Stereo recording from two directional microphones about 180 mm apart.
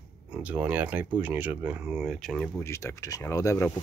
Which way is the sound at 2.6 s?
15° left (ahead or behind).